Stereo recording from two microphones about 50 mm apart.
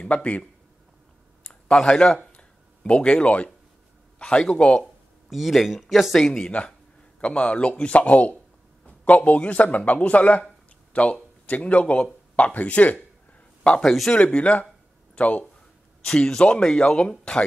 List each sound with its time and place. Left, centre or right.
0.0 s speech: left
1.4 s a sound: centre
4.2 s speech: centre
5.3 s speech: centre
6.1 s speech: centre
7.2 s speech: left
13.8 s speech: centre
14.1 s speech: left
16.0 s speech: centre